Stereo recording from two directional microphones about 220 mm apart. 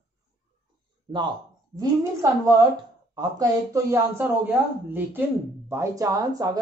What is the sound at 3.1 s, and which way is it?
Speech, 15° right (ahead or behind).